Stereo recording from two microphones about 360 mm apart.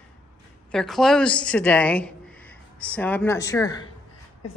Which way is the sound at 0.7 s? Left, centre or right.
Centre.